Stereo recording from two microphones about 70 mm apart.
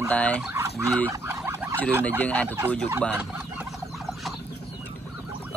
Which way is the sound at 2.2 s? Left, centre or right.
Left.